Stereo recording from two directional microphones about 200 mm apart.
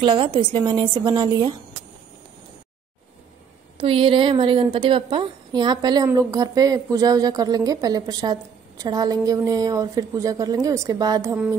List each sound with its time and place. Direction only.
0.0 s a woman's voice: 25° right (ahead or behind)
3.7 s a woman's voice: 25° right (ahead or behind)